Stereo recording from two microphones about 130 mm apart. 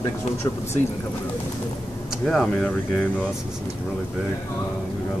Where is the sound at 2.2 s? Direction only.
5° left (ahead or behind).